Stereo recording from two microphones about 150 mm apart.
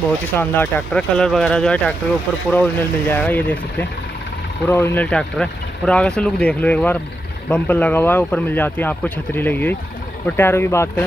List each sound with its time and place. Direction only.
0.4 s speech: 15° left (ahead or behind)
4.6 s speech: 15° left (ahead or behind)